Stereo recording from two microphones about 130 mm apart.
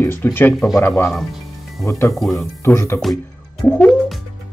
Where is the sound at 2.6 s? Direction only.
20° left (ahead or behind).